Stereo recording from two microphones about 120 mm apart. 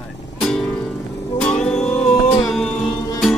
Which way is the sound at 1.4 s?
5° left (ahead or behind).